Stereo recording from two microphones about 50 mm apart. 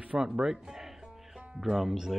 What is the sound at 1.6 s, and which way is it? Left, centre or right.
Speech, centre.